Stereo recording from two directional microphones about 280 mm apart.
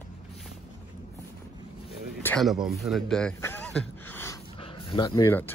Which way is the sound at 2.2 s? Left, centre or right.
Centre.